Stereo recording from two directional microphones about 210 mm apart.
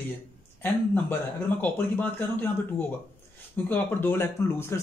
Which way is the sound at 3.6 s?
10° left (ahead or behind).